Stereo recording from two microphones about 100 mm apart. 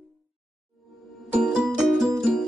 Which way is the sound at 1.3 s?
10° right (ahead or behind).